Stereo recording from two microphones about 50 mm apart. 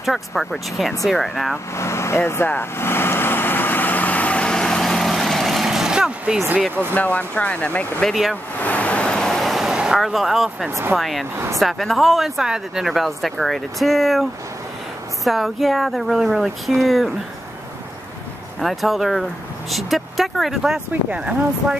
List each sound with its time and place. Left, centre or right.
0.0 s speech: centre
1.8 s speech: left
2.6 s vehicle: left; by 6.4 s centre
6.9 s speech: left
8.1 s speech: centre
8.5 s waves: left; by 9.7 s centre
9.7 s vehicle: centre
9.9 s speech: centre
11.3 s speech: right
11.6 s speech: centre
15.2 s speech: centre
18.6 s speech: centre
21.2 s speech: centre